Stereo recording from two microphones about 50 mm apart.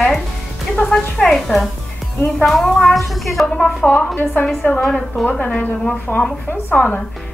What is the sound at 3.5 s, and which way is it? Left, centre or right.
A woman's voice, centre.